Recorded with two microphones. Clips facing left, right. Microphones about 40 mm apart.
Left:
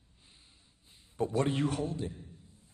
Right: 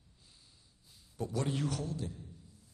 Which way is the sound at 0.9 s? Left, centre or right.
Left.